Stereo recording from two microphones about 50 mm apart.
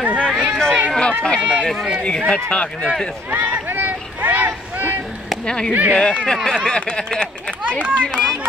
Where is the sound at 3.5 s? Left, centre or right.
Right.